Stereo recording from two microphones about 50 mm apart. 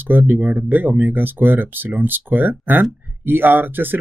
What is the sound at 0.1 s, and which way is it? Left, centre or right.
Speech, right.